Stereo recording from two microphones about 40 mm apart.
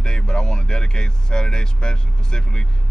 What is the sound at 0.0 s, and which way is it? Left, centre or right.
Speech, left.